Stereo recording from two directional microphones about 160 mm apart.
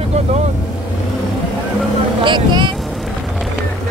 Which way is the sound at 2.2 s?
30° right (ahead or behind).